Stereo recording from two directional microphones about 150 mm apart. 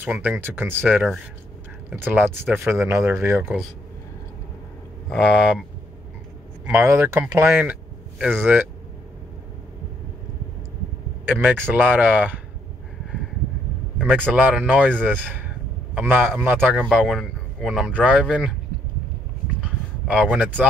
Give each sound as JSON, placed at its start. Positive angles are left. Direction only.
{"t": 0.1, "sound": "a man's voice", "side_deg": -10}
{"t": 5.1, "sound": "speech", "side_deg": -5}
{"t": 6.6, "sound": "a man's voice", "side_deg": -15}
{"t": 11.2, "sound": "a man's voice", "side_deg": -15}
{"t": 13.9, "sound": "a man's voice", "side_deg": -10}
{"t": 19.6, "sound": "a sound", "side_deg": -5}